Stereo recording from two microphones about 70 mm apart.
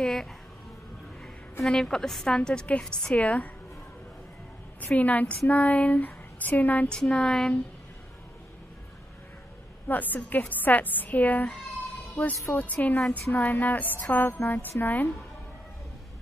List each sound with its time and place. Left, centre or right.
0.0 s a woman's voice: centre
4.7 s a woman's voice: left
5.5 s a sound: left
6.9 s a woman's voice: centre
9.8 s a woman's voice: left